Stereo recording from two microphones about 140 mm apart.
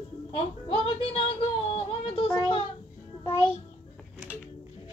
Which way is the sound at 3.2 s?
20° left (ahead or behind).